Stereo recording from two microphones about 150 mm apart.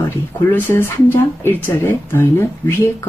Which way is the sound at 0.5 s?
15° left (ahead or behind).